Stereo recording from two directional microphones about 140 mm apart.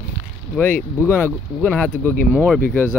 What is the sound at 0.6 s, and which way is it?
Speech, 10° left (ahead or behind).